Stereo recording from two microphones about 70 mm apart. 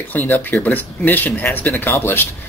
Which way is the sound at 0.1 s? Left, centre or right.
Left.